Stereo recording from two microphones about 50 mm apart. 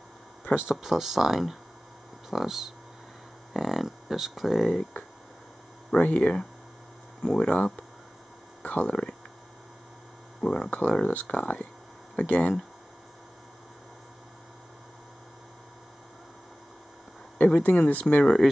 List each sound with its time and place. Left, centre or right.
0.7 s speech: centre
5.9 s speech: left
8.8 s speech: centre
10.4 s speech: centre
17.4 s speech: left
18.0 s speech: centre